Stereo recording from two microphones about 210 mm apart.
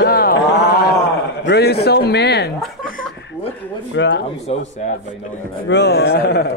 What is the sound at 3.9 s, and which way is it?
Speech, 60° left (ahead or behind).